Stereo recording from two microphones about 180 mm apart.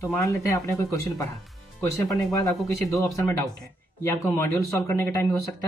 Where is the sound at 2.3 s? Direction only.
20° left (ahead or behind).